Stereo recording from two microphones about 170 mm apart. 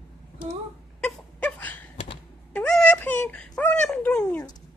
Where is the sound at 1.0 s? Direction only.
5° left (ahead or behind).